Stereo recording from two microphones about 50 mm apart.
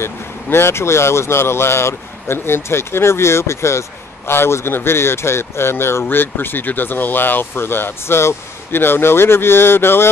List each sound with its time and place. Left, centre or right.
0.0 s speech: left
4.3 s speech: left